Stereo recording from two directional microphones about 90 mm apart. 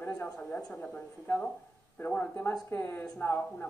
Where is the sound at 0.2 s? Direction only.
15° left (ahead or behind).